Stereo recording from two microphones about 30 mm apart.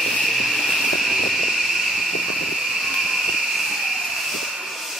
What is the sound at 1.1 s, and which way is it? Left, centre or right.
Vehicle, centre.